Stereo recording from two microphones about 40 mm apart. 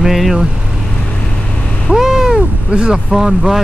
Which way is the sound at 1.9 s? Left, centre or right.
Centre.